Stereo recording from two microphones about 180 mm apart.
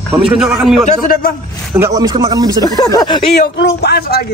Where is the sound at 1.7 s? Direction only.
15° right (ahead or behind).